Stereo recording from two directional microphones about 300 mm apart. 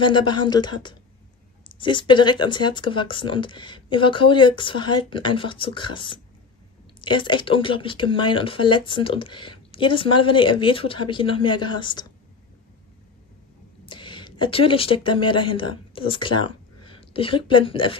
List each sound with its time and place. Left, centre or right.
0.0 s speech: centre
13.8 s speech: centre